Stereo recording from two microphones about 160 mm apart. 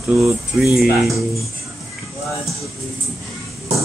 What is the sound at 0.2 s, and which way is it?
Speech, centre (ahead or behind).